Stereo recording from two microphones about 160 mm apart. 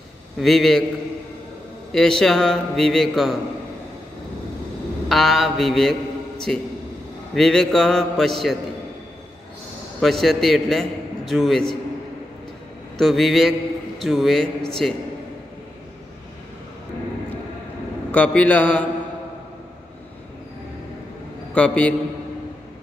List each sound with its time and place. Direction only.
0.4 s a man's voice: centre (ahead or behind)
1.9 s a man's voice: 5° left (ahead or behind)
5.0 s a man's voice: centre (ahead or behind)
9.9 s a man's voice: centre (ahead or behind)
12.9 s a man's voice: centre (ahead or behind)
18.1 s a man's voice: 10° left (ahead or behind)
21.5 s a man's voice: 10° left (ahead or behind)